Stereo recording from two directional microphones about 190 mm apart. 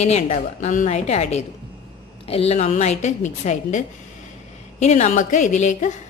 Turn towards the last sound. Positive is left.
turn(degrees=40)  # may be behind; listen again after turning